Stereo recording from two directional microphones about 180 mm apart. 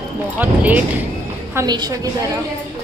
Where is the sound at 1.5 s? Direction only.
20° right (ahead or behind).